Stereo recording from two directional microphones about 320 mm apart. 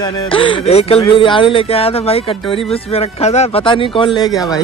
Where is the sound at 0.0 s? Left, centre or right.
Centre.